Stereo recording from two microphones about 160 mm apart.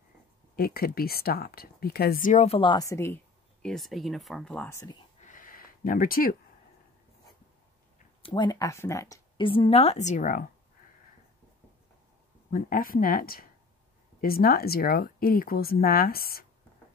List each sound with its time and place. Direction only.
0.6 s speech: 70° left (ahead or behind)
2.4 s speech: 35° left (ahead or behind); by 3.2 s 20° left (ahead or behind)
3.6 s speech: centre (ahead or behind)
4.6 s speech: 20° left (ahead or behind)
5.2 s a sound: 55° left (ahead or behind)
8.2 s speech: 30° left (ahead or behind)
9.4 s a woman's voice: 35° left (ahead or behind); by 10.4 s 55° left (ahead or behind)
12.4 s speech: 60° left (ahead or behind)